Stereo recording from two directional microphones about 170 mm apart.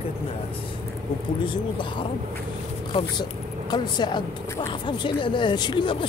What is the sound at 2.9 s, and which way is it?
A woman's voice, 30° left (ahead or behind).